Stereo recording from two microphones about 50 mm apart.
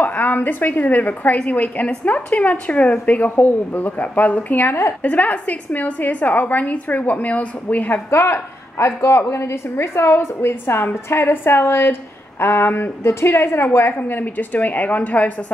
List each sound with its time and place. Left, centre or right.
0.0 s a woman's voice: left
3.3 s a woman's voice: left
4.6 s a woman's voice: left
5.0 s a woman's voice: left
7.9 s a woman's voice: left
13.0 s a woman's voice: left